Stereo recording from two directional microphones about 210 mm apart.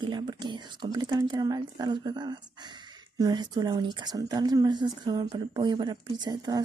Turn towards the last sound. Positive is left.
turn(degrees=-20)  # may be behind; listen again after turning